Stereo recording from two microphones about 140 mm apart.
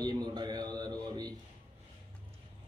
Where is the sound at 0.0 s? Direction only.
30° right (ahead or behind).